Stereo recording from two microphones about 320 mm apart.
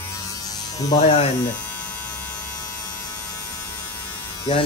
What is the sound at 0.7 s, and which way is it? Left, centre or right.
Speech, centre.